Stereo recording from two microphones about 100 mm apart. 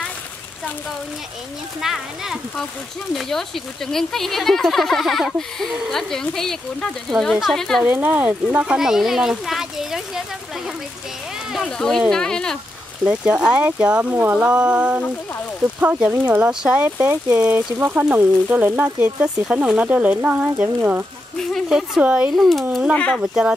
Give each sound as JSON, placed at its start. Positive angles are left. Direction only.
{"t": 1.8, "sound": "speech", "side_deg": -5}
{"t": 7.8, "sound": "speech", "side_deg": -15}
{"t": 11.6, "sound": "speech", "side_deg": 5}
{"t": 13.1, "sound": "speech", "side_deg": -10}
{"t": 22.3, "sound": "speech", "side_deg": 0}
{"t": 22.9, "sound": "speech", "side_deg": 15}
{"t": 23.2, "sound": "speech", "side_deg": -10}